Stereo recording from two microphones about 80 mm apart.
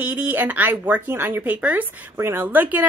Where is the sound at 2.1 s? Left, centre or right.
Right.